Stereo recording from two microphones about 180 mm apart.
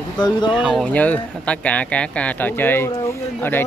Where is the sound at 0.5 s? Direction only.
Centre (ahead or behind).